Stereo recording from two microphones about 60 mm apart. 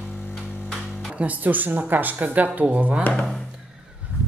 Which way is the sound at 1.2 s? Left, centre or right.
Right.